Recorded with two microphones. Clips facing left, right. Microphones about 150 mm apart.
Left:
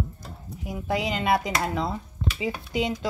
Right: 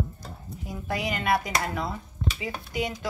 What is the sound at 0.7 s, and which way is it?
Speech, 20° left (ahead or behind).